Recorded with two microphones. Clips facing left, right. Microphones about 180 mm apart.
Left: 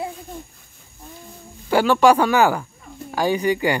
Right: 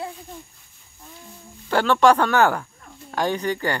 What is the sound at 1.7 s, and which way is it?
Speech, 5° left (ahead or behind).